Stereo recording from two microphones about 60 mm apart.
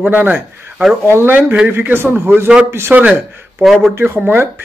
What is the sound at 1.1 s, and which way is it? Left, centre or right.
A man's voice, right.